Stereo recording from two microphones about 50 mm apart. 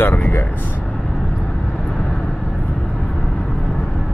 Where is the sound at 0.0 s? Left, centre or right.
Left.